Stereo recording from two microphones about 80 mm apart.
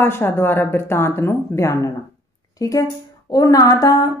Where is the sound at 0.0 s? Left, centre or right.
Left.